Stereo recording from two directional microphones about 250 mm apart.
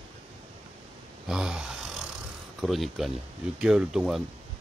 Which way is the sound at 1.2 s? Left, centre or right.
Centre.